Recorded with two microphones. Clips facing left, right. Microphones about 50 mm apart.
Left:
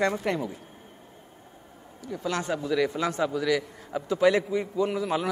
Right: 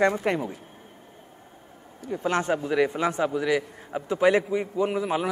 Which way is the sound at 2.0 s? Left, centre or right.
Right.